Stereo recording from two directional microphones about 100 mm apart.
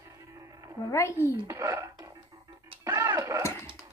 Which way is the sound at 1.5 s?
30° right (ahead or behind).